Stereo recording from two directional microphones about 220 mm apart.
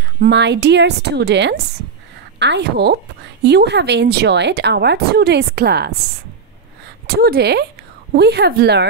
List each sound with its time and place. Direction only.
0.2 s a woman's voice: 50° right (ahead or behind)
7.2 s a woman's voice: 45° right (ahead or behind)